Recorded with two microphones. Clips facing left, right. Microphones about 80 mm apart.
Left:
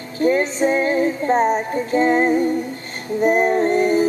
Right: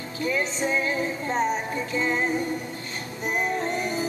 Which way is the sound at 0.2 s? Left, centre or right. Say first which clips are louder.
Left 9 dB; left.